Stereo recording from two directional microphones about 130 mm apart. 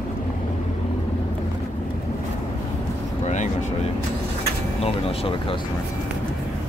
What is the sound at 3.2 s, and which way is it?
Vehicle, 65° left (ahead or behind).